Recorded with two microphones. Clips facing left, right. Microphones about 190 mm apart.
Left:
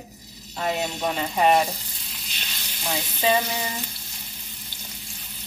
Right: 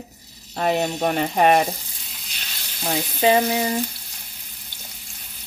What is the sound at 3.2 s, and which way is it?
Frying, 45° right (ahead or behind).